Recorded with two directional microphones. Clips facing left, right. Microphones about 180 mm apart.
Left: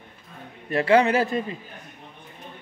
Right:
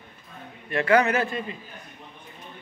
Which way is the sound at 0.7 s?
30° left (ahead or behind).